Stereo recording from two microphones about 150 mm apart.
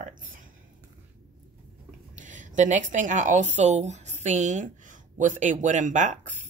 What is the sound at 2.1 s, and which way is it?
A woman's voice, 55° right (ahead or behind).